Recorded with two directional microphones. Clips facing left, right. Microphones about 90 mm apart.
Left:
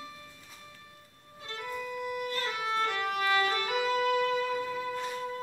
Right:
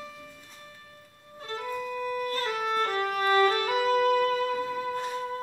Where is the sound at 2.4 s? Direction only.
40° right (ahead or behind).